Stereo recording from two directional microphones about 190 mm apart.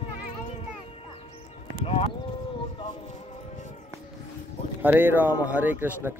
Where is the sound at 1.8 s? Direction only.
30° left (ahead or behind).